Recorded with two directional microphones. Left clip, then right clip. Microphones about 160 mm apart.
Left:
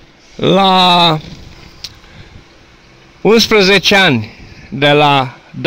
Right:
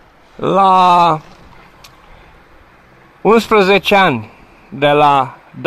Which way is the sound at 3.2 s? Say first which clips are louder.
Left 1 dB; 20° left (ahead or behind).